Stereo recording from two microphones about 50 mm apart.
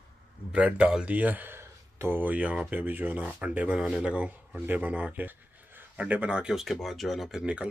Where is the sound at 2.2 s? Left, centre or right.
Right.